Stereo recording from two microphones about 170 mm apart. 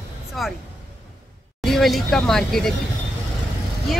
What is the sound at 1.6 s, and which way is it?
Speech, centre (ahead or behind).